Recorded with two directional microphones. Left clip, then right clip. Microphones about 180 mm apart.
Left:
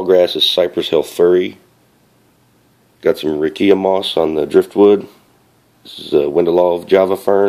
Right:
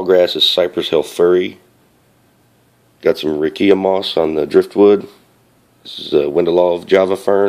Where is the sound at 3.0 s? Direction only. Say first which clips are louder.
Even; centre (ahead or behind).